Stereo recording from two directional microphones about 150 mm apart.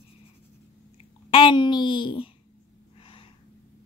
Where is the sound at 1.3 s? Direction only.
35° left (ahead or behind).